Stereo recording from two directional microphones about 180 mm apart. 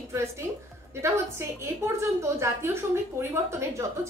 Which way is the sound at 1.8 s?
15° right (ahead or behind).